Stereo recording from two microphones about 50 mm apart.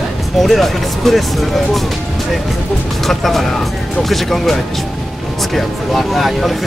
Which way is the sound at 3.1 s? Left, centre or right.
Centre.